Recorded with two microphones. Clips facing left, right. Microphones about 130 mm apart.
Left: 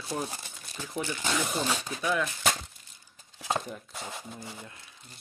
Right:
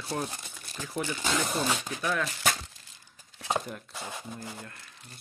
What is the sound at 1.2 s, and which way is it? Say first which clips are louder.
Speech: right 1 dB; centre (ahead or behind).